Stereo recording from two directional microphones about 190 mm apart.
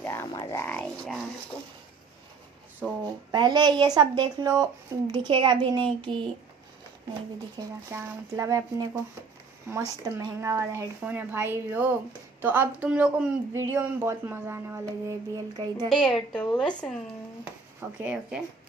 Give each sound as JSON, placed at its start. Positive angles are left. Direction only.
{"t": 0.0, "sound": "speech", "side_deg": 15}
{"t": 3.3, "sound": "speech", "side_deg": -20}
{"t": 7.5, "sound": "speech", "side_deg": -15}
{"t": 15.9, "sound": "a woman's voice", "side_deg": 5}
{"t": 17.7, "sound": "speech", "side_deg": -10}